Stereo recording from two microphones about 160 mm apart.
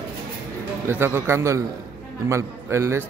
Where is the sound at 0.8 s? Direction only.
15° right (ahead or behind).